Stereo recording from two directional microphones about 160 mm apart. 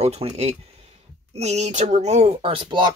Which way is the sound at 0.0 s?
40° right (ahead or behind).